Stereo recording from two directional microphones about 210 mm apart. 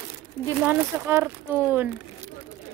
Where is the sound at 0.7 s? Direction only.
10° right (ahead or behind).